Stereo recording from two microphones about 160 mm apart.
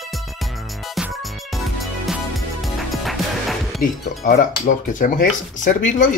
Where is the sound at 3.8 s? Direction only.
70° left (ahead or behind).